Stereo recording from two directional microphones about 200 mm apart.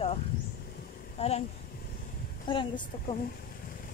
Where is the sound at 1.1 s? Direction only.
30° left (ahead or behind).